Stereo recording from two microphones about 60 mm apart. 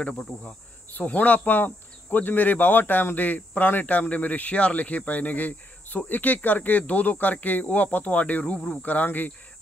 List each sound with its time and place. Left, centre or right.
0.0 s cricket: centre
0.9 s speech: left